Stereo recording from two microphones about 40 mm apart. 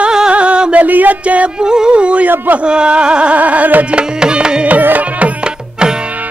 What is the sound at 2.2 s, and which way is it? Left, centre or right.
Speech, right.